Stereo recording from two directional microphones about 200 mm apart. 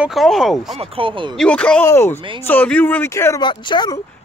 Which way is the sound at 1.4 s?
5° left (ahead or behind).